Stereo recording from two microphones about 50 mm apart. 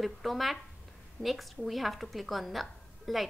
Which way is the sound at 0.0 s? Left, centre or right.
Centre.